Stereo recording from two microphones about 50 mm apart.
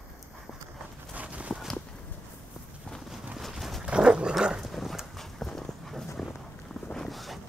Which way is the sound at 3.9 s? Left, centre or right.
Centre.